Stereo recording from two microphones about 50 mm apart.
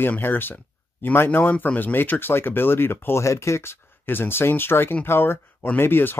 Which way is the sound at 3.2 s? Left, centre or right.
Left.